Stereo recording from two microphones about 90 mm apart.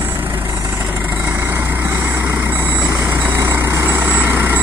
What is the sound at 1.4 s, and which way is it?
Vehicle, 25° right (ahead or behind).